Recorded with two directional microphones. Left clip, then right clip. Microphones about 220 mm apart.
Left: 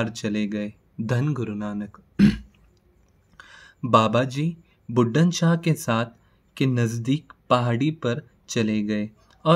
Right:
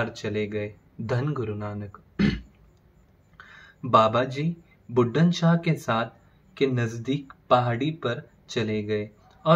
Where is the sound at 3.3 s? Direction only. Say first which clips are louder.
Left 3 dB; 50° left (ahead or behind).